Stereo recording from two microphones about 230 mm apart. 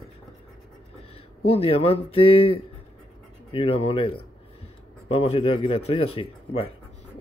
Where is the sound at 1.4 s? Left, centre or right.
Left.